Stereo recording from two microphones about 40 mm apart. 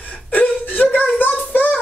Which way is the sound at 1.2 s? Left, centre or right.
Left.